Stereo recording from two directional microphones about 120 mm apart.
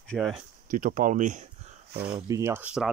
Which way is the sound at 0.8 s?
90° right.